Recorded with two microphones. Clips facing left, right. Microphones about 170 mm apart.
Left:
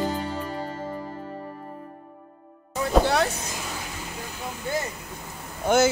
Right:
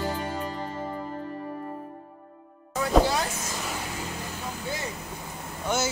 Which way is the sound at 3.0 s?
65° left (ahead or behind).